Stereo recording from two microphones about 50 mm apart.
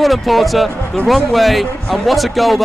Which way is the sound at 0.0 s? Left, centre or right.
Centre.